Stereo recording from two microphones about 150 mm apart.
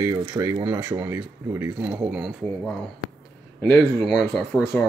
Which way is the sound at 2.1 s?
Centre (ahead or behind).